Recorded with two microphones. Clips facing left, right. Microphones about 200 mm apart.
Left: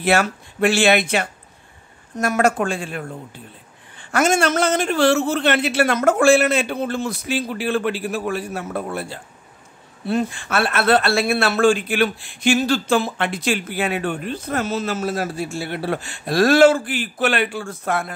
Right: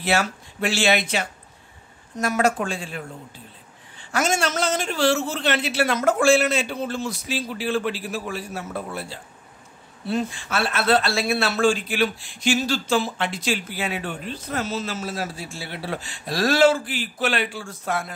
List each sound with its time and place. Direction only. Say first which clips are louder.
0.0 s speech: left 4 dB; 55° left (ahead or behind)